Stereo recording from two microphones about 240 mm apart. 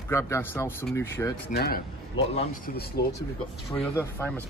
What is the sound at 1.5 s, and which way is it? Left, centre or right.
Speech, left.